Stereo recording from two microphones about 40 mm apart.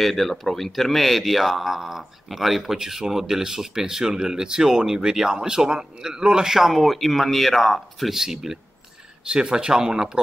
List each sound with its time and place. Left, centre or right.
0.0 s speech: centre
8.1 s speech: centre